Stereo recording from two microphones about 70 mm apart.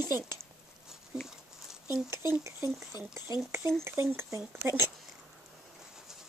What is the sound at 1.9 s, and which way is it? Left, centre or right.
Speech, right.